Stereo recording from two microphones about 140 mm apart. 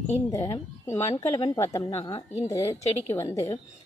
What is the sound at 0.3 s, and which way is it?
Speech, 20° left (ahead or behind).